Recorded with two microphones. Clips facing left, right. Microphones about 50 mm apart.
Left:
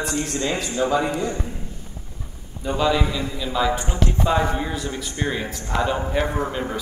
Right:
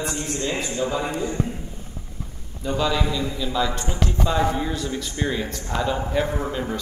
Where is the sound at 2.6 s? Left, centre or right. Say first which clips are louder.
Left 2 dB; centre.